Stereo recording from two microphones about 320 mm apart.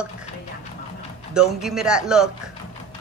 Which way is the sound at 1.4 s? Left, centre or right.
Centre.